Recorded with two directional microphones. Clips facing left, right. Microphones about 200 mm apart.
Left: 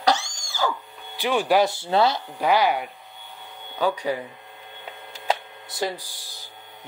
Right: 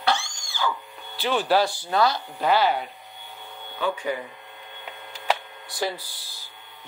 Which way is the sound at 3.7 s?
40° left (ahead or behind).